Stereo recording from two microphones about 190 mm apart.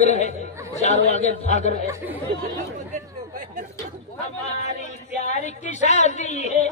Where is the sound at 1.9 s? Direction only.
10° right (ahead or behind).